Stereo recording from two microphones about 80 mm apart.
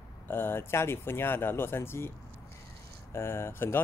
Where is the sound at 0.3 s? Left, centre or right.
Left.